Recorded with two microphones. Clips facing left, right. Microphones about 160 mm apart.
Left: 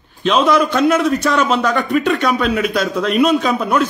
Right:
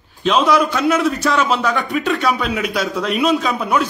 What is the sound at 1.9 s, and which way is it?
Speech, 55° left (ahead or behind).